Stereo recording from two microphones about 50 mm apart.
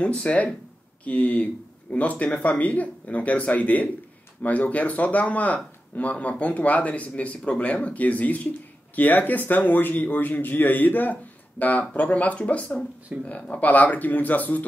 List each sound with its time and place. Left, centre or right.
0.0 s speech: left